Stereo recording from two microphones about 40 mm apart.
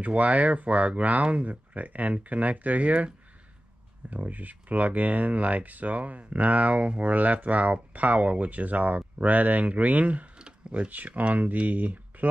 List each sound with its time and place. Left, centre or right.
0.0 s speech: right
4.1 s speech: right